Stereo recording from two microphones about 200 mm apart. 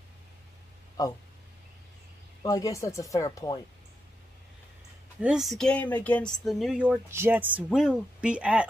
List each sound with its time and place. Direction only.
1.0 s speech: 20° left (ahead or behind)
2.4 s speech: 15° left (ahead or behind)
5.2 s speech: centre (ahead or behind)